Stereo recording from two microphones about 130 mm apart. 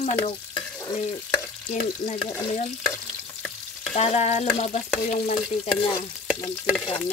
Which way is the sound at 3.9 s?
55° left (ahead or behind).